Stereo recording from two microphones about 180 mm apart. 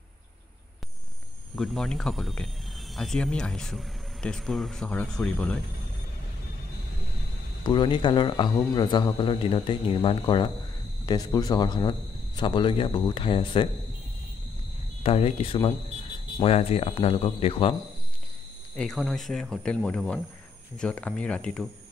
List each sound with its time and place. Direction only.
1.5 s speech: centre (ahead or behind)
7.6 s speech: 25° left (ahead or behind)
15.0 s speech: 35° left (ahead or behind)
18.8 s speech: centre (ahead or behind)